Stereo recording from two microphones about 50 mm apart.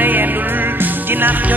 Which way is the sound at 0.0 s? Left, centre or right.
Right.